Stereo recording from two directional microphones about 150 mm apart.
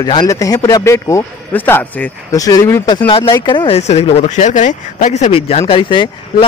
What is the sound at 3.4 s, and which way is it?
A man's voice, 35° left (ahead or behind).